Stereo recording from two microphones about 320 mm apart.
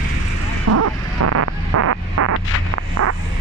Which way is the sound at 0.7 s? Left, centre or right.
Right.